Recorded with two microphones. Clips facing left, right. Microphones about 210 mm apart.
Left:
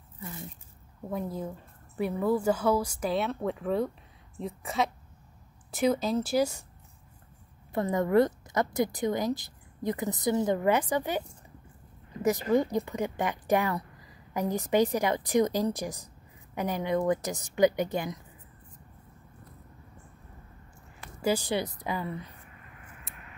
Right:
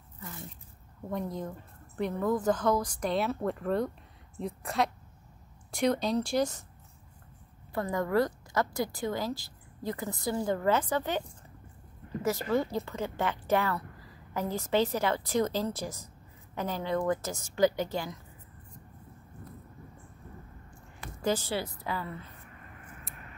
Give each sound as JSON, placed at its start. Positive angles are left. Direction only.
{"t": 1.1, "sound": "a woman's voice", "side_deg": 5}
{"t": 7.7, "sound": "a woman's voice", "side_deg": 20}
{"t": 21.2, "sound": "a woman's voice", "side_deg": 10}